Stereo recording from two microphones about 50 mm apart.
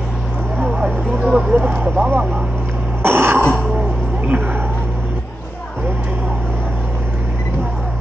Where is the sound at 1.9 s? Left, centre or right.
Right.